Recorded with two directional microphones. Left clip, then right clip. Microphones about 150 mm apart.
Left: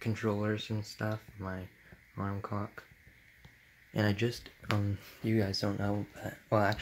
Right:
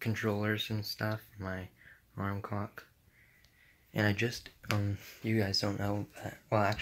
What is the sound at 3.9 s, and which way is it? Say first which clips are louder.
Speech: right 1 dB; 10° left (ahead or behind).